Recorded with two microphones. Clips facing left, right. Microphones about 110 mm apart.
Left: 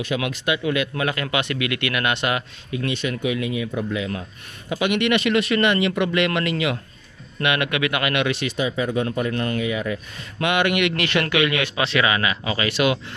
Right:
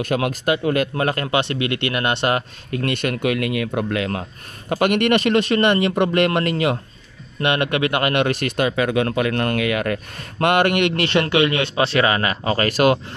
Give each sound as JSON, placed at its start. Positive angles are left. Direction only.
{"t": 0.0, "sound": "a man's voice", "side_deg": -45}
{"t": 2.7, "sound": "speech", "side_deg": -55}
{"t": 10.1, "sound": "a man's voice", "side_deg": -50}